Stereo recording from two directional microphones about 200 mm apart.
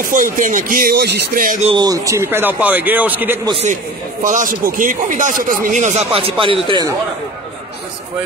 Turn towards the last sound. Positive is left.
turn(degrees=-25)  # may be behind; listen again after turning